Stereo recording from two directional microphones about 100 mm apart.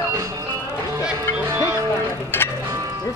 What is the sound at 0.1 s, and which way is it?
Music, 30° right (ahead or behind).